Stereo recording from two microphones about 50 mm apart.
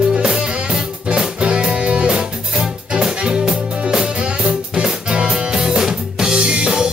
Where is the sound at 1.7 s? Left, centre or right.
Right.